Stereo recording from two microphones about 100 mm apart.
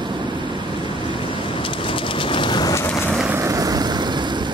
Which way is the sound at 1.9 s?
60° left (ahead or behind).